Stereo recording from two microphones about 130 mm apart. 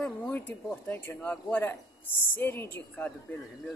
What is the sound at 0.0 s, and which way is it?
Speech, 10° left (ahead or behind).